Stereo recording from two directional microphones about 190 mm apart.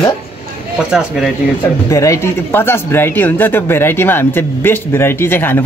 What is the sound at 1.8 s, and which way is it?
Speech, 15° left (ahead or behind).